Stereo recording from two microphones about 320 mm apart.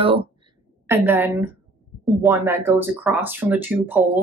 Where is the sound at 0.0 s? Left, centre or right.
Centre.